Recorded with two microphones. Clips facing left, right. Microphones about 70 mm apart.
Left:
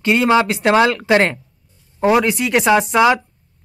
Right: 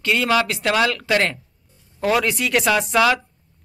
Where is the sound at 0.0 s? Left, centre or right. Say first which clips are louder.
Left 5 dB; left.